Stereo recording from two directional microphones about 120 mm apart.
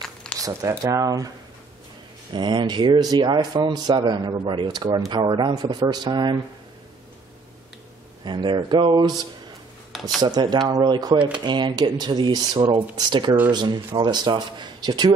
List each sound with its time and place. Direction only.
0.0 s zipper: 5° left (ahead or behind)
0.4 s speech: 30° right (ahead or behind)
2.3 s speech: 40° right (ahead or behind)
8.3 s speech: 40° right (ahead or behind)
11.1 s speech: 10° right (ahead or behind)
11.4 s speech: 40° right (ahead or behind)